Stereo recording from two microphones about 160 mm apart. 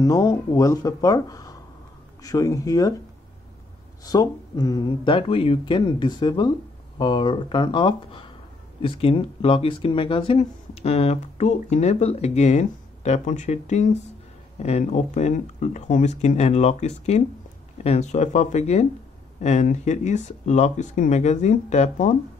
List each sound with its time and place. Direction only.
0.0 s speech: 20° left (ahead or behind)
4.0 s speech: 25° left (ahead or behind); by 22.1 s 45° left (ahead or behind)